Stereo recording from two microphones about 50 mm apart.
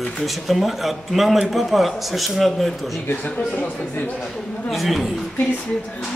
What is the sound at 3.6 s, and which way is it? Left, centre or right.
Speech, left.